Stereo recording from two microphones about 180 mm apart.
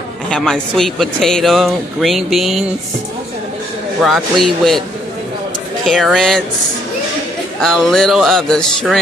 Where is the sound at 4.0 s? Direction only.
Centre (ahead or behind).